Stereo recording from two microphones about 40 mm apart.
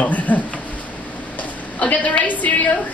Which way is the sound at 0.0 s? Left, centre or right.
Left.